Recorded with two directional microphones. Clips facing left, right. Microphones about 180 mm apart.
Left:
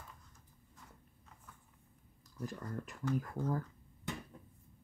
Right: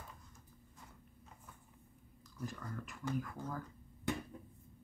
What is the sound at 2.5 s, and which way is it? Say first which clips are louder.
Speech: left 3 dB; 35° left (ahead or behind).